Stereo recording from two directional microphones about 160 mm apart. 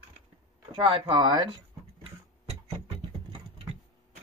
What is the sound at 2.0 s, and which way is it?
Tick-tock, 40° right (ahead or behind).